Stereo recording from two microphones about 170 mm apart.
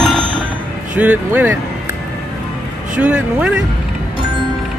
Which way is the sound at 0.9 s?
10° right (ahead or behind).